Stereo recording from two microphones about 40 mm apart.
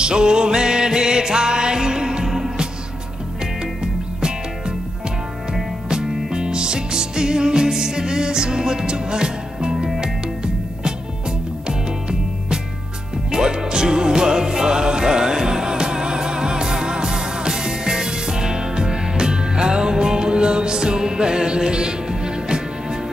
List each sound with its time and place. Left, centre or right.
0.0 s music: centre
3.8 s music: centre